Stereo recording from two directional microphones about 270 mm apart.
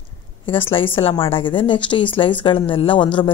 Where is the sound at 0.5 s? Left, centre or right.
Centre.